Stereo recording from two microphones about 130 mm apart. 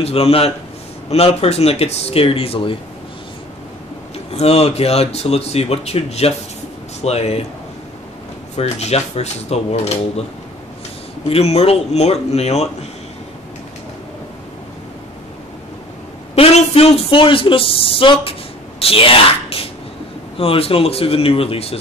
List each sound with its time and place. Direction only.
0.0 s speech: 50° left (ahead or behind)
4.3 s speech: 55° left (ahead or behind)
8.5 s speech: 55° left (ahead or behind)
11.2 s speech: 50° left (ahead or behind)
16.3 s a woman's voice: 50° left (ahead or behind)